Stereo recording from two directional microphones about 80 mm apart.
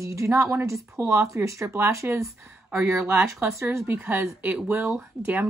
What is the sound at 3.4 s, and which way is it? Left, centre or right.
A woman's voice, right.